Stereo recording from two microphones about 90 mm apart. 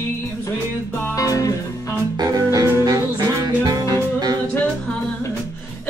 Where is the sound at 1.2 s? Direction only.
40° left (ahead or behind).